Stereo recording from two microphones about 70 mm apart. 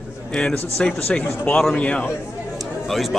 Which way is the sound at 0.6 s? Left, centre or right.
Left.